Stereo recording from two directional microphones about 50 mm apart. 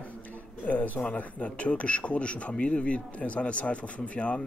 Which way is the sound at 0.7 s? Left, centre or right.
Left.